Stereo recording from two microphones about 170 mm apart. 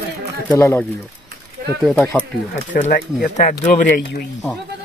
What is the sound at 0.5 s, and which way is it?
Speech, 15° left (ahead or behind).